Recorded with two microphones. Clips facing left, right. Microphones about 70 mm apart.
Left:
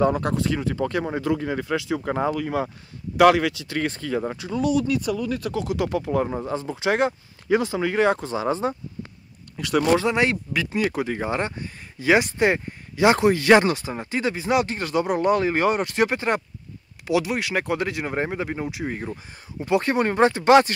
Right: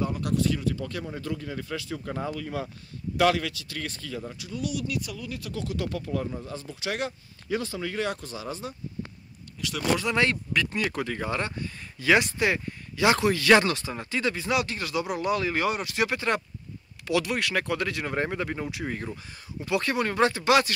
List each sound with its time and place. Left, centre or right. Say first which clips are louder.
0.2 s speech: left 2 dB; left
1.5 s speech: left 9 dB; left
2.0 s speech: left 7 dB; left
3.3 s speech: left 9 dB; left
4.1 s speech: left 10 dB; left
4.4 s speech: left 9 dB; left
5.5 s speech: left 4 dB; centre; by 8.7 s left
9.6 s speech: left 11 dB; left
10.1 s speech: left 3 dB; centre; by 16.1 s left
16.1 s speech: left 3 dB; left
19.6 s speech: left 5 dB; left